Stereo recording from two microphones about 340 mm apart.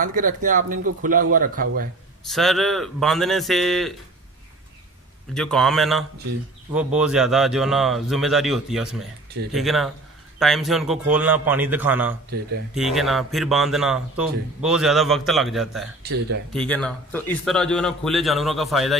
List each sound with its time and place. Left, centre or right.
0.0 s speech: right
2.2 s a man's voice: centre
5.3 s a man's voice: centre
16.0 s speech: right
16.5 s a man's voice: centre